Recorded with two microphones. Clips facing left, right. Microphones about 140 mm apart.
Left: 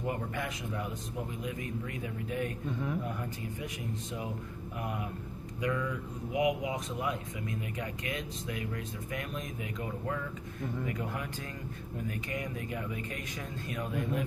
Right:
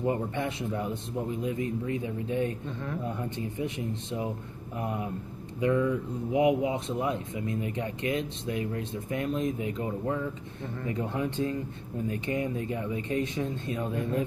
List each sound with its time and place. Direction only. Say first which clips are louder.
0.0 s speech: right 6 dB; 30° right (ahead or behind)